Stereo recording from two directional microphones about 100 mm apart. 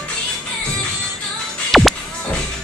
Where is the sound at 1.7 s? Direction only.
Centre (ahead or behind).